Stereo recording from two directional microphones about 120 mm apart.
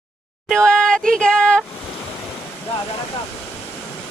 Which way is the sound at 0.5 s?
5° left (ahead or behind).